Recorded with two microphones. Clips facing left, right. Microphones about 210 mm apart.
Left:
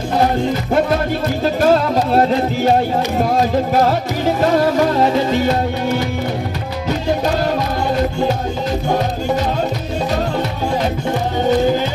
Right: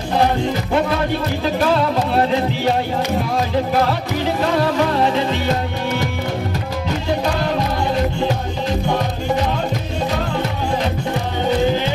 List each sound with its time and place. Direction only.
1.4 s music: 45° left (ahead or behind)